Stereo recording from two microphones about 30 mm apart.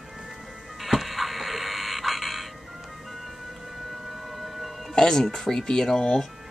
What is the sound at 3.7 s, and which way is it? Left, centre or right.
Siren, centre.